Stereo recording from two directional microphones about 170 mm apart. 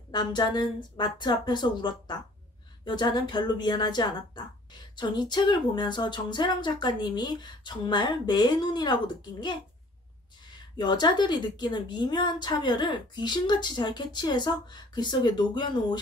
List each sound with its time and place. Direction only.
0.1 s a woman's voice: 25° left (ahead or behind)
10.8 s a woman's voice: 25° left (ahead or behind)